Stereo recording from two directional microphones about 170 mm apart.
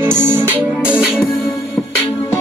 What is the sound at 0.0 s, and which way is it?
Music, 15° right (ahead or behind).